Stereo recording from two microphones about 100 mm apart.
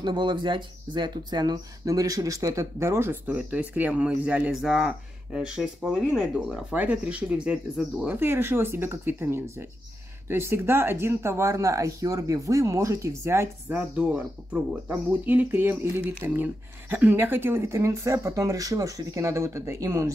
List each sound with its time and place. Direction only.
0.0 s speech: 50° right (ahead or behind); by 8.2 s 10° right (ahead or behind)
8.2 s speech: 25° right (ahead or behind)